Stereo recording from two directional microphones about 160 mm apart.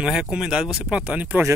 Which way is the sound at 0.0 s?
5° right (ahead or behind).